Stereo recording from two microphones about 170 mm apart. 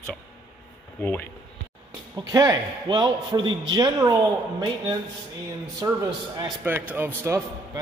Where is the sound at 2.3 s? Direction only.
20° right (ahead or behind).